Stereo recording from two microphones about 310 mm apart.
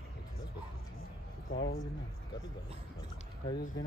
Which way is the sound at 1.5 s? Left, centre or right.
Left.